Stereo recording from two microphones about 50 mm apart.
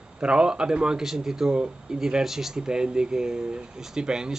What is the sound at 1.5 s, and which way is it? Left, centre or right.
Speech, centre.